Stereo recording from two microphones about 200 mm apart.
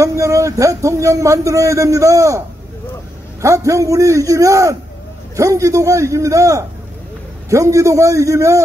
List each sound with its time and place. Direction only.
0.0 s a man's voice: 15° right (ahead or behind)